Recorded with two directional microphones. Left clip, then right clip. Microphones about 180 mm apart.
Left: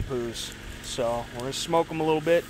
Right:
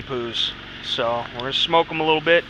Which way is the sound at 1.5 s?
20° left (ahead or behind).